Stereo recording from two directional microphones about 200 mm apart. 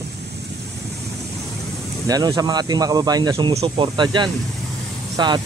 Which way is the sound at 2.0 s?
20° right (ahead or behind).